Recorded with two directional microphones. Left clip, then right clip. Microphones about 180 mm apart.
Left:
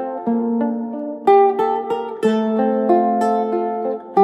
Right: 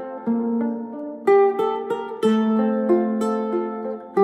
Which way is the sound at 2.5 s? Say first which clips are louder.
Left 4 dB; 25° left (ahead or behind).